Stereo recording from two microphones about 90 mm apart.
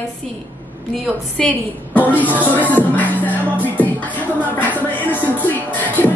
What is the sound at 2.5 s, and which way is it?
Music, 20° left (ahead or behind).